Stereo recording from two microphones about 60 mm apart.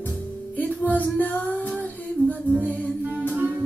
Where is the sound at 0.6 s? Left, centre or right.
Left.